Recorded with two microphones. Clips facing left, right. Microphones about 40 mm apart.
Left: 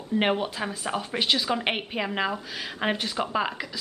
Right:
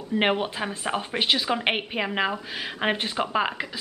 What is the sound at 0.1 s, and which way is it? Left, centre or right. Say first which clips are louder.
A woman's voice: right 1 dB; right.